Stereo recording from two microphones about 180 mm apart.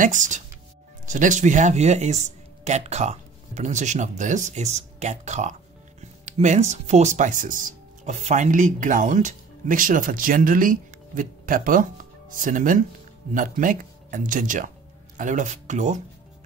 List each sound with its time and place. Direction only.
0.0 s speech: 45° right (ahead or behind)